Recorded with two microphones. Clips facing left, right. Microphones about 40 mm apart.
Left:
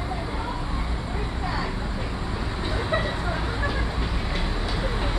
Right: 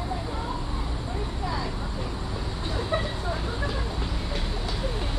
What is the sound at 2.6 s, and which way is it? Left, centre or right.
Vehicle, left.